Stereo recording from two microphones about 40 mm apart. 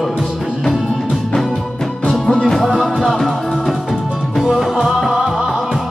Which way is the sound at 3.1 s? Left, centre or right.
Centre.